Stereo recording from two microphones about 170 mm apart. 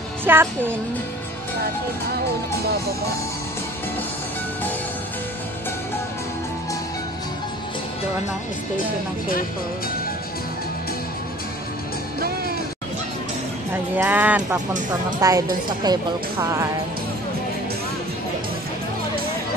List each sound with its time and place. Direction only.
0.2 s speech: 10° right (ahead or behind)
13.9 s speech: 10° right (ahead or behind)
15.1 s speech: 20° right (ahead or behind)